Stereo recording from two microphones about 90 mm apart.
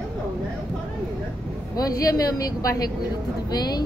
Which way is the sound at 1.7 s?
45° left (ahead or behind).